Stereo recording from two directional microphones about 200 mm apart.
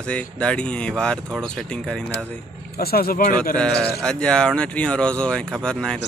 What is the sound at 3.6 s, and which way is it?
Speech, 5° left (ahead or behind).